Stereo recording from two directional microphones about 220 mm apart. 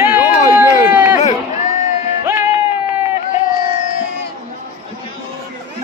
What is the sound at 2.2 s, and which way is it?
Music, 10° right (ahead or behind).